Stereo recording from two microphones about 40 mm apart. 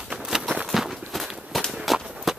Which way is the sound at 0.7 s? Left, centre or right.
Centre.